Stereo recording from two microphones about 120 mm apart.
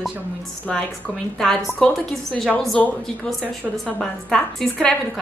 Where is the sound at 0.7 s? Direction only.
5° left (ahead or behind).